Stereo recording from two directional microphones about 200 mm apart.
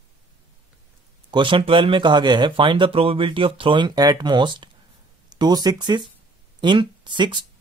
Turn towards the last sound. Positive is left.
turn(degrees=-25)  # may be behind; listen again after turning